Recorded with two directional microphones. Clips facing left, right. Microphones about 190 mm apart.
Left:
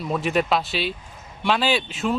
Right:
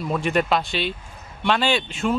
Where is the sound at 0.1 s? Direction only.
Centre (ahead or behind).